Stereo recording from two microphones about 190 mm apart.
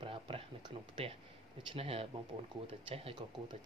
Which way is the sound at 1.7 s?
30° right (ahead or behind).